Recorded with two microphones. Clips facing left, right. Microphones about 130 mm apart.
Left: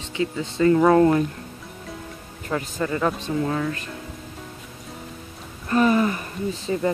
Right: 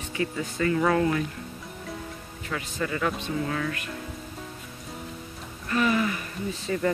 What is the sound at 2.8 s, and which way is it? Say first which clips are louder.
Speech: left 3 dB; 25° left (ahead or behind).